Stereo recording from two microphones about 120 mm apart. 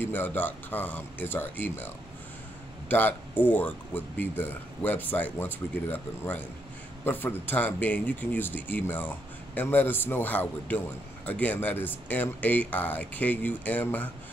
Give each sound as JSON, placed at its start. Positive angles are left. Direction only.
{"t": 0.0, "sound": "speech", "side_deg": 15}
{"t": 2.9, "sound": "speech", "side_deg": 15}